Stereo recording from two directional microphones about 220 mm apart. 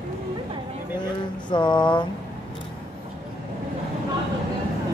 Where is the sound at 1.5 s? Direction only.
20° left (ahead or behind).